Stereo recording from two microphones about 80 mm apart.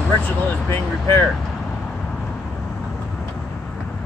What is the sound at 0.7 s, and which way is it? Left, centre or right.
Speech, left.